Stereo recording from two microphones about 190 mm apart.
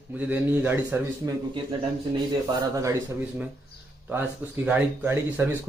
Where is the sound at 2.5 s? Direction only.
15° right (ahead or behind).